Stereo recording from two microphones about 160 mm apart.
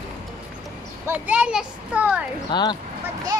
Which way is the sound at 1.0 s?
10° right (ahead or behind).